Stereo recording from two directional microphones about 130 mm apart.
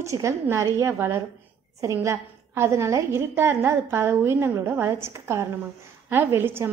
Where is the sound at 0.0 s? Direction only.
25° right (ahead or behind).